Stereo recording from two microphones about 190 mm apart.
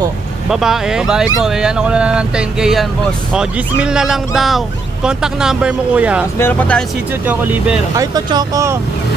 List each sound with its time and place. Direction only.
0.5 s speech: 5° right (ahead or behind)
6.3 s speech: 10° left (ahead or behind)
7.2 s speech: 5° right (ahead or behind)
7.9 s speech: 20° right (ahead or behind)